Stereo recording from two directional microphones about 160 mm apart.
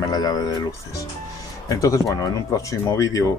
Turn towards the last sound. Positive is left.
turn(degrees=20)  # may be behind; listen again after turning